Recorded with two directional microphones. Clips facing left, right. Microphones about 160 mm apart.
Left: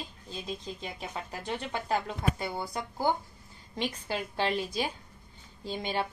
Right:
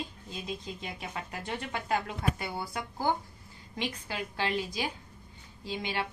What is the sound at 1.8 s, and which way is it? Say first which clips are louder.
Speech: even; 25° left (ahead or behind).